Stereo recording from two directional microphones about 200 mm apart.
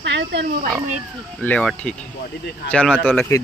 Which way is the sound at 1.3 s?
5° left (ahead or behind).